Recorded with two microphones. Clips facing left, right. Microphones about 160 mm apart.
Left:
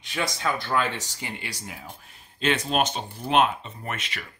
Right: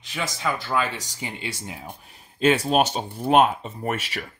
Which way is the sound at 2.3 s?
40° right (ahead or behind).